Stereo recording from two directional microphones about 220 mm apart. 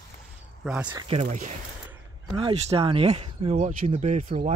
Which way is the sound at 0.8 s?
25° right (ahead or behind).